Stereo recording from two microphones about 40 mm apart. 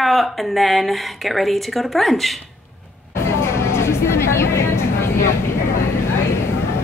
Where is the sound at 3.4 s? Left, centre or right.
Left.